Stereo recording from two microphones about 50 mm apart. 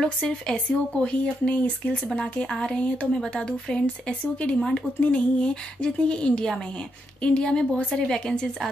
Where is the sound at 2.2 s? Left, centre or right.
Centre.